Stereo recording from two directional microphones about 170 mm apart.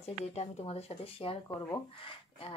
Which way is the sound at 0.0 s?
40° left (ahead or behind).